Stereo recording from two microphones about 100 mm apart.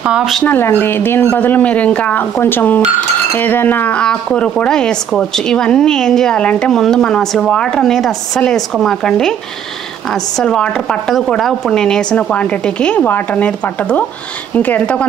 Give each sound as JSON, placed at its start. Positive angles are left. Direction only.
{"t": 0.0, "sound": "speech", "side_deg": -5}
{"t": 0.5, "sound": "speech", "side_deg": 20}
{"t": 2.3, "sound": "speech", "side_deg": 20}
{"t": 10.4, "sound": "speech", "side_deg": 10}